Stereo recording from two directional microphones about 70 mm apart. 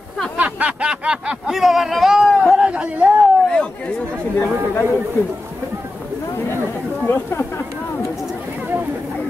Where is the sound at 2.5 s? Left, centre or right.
Centre.